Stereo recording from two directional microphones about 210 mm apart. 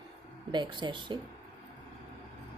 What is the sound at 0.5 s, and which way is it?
Speech, 20° right (ahead or behind).